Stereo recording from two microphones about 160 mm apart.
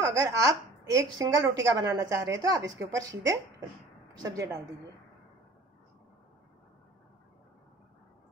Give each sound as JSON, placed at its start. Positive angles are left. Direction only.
{"t": 0.0, "sound": "a woman's voice", "side_deg": -20}